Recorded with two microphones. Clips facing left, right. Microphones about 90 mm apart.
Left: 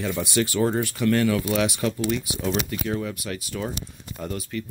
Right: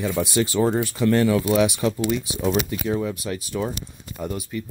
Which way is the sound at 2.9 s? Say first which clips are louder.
Right 6 dB; 20° right (ahead or behind).